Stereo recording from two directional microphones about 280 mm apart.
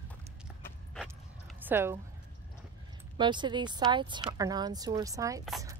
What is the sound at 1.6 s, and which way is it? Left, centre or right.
Speech, centre.